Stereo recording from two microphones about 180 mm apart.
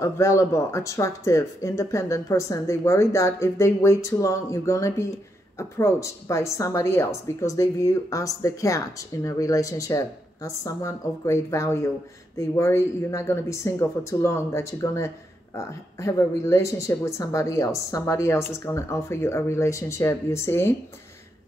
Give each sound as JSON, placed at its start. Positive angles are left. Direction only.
{"t": 0.0, "sound": "a woman's voice", "side_deg": 15}